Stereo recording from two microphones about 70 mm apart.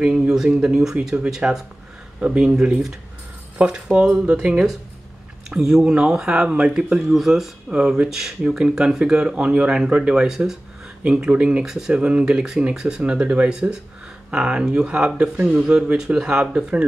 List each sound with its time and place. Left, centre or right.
0.0 s speech: centre